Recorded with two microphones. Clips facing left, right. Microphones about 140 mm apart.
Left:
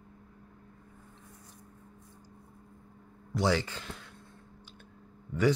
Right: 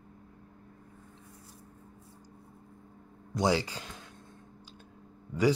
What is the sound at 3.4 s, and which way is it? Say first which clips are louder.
Speech: right 1 dB; 15° right (ahead or behind).